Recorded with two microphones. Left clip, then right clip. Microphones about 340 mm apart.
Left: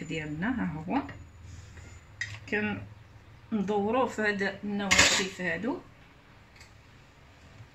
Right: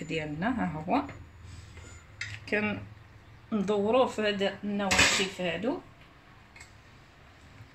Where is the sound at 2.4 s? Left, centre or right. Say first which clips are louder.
Right 2 dB; centre.